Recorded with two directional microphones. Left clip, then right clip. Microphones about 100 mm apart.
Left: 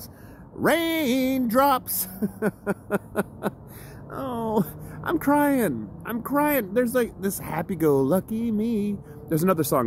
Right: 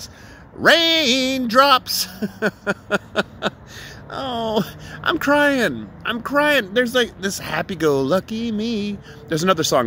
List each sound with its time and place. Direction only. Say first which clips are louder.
0.7 s speech: right 8 dB; 50° left (ahead or behind)